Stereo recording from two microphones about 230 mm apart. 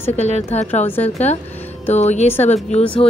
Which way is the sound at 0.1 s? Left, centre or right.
Left.